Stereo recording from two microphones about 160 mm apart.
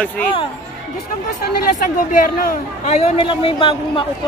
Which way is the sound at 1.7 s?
55° left (ahead or behind).